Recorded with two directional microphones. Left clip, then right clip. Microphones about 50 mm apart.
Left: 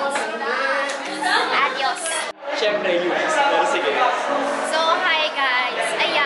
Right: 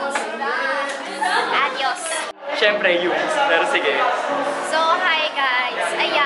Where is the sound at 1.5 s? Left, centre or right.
Centre.